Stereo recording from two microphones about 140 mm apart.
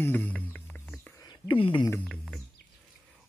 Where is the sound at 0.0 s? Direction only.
15° left (ahead or behind).